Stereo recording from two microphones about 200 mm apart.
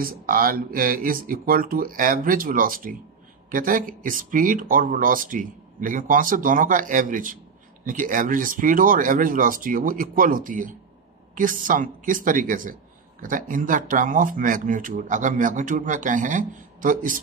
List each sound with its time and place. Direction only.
0.0 s speech: 45° right (ahead or behind)